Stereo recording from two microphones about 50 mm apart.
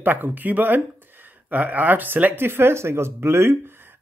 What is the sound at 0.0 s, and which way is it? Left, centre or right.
Speech, right.